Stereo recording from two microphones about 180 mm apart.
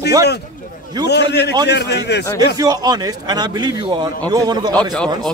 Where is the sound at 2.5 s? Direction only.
20° right (ahead or behind).